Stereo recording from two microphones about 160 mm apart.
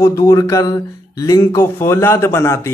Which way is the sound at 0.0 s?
20° left (ahead or behind).